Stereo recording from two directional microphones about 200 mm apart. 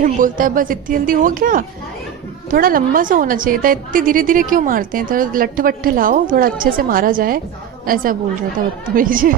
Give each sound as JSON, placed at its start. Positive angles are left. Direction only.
{"t": 0.0, "sound": "a woman's voice", "side_deg": -45}